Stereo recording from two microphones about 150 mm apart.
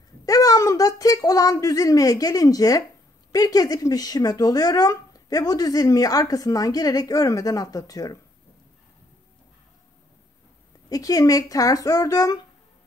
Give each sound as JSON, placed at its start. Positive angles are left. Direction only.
{"t": 0.2, "sound": "speech", "side_deg": 25}
{"t": 10.9, "sound": "speech", "side_deg": 25}